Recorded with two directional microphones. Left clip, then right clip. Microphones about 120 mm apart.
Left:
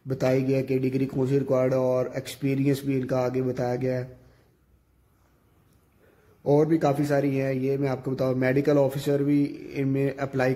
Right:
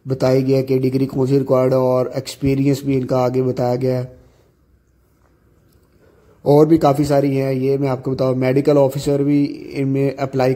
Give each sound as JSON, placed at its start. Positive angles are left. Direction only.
{"t": 0.1, "sound": "a man's voice", "side_deg": -25}
{"t": 6.4, "sound": "a man's voice", "side_deg": -35}